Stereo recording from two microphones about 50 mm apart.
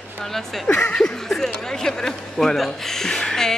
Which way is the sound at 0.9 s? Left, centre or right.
Centre.